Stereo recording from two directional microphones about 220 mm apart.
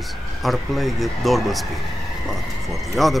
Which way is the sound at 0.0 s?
Centre (ahead or behind).